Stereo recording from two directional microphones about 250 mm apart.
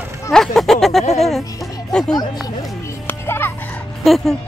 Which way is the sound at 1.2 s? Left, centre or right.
Centre.